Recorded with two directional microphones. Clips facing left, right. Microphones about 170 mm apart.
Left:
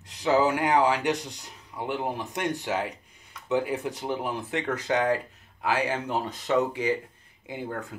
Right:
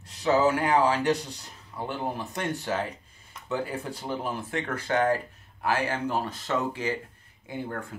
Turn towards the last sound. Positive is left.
turn(degrees=15)  # may be behind; listen again after turning